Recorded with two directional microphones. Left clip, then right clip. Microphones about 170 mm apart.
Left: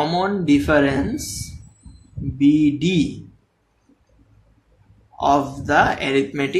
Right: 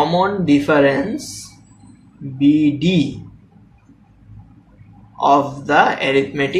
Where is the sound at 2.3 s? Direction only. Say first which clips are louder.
Right 2 dB; 45° left (ahead or behind).